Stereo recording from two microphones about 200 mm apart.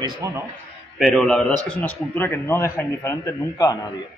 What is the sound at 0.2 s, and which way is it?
Speech, 15° right (ahead or behind).